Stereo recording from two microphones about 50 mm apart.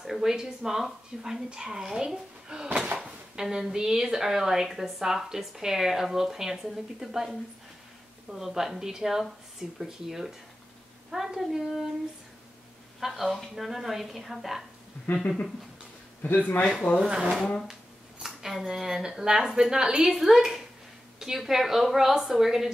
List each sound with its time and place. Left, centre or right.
0.0 s a woman's voice: centre
13.0 s a woman's voice: centre
16.2 s a man's voice: left
17.0 s speech: right
18.2 s a woman's voice: centre
20.2 s a woman's voice: centre